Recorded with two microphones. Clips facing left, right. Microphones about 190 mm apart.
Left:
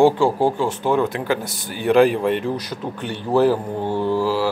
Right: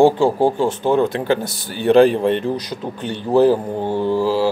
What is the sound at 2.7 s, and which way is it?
Speech, 20° right (ahead or behind).